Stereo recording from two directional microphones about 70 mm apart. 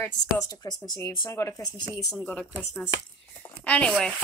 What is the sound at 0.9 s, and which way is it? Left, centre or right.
Speech, left.